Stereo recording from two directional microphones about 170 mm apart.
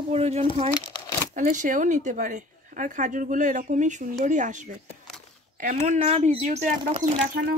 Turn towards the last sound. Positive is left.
turn(degrees=-35)  # may be behind; listen again after turning